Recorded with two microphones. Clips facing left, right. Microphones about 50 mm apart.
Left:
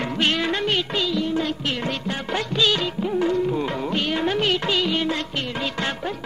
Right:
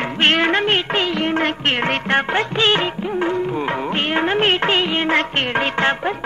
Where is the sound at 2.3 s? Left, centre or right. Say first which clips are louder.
Right 4 dB; right.